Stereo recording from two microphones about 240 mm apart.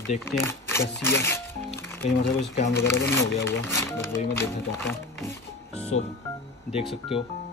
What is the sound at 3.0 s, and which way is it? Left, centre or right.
Speech, centre.